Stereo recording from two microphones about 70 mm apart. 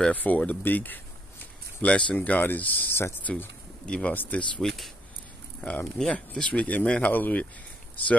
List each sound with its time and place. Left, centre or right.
0.1 s speech: left
2.1 s speech: left
3.3 s speech: centre
4.6 s speech: centre
5.6 s speech: centre